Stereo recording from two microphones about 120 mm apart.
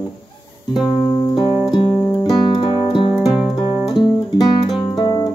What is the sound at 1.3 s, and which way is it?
Music, 40° left (ahead or behind).